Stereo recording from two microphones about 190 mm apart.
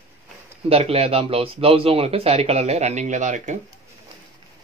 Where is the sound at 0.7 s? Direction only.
30° right (ahead or behind).